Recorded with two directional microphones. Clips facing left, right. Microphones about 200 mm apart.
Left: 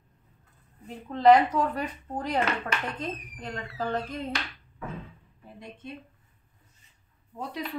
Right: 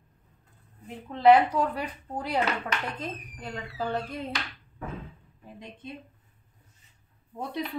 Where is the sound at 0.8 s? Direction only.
Centre (ahead or behind).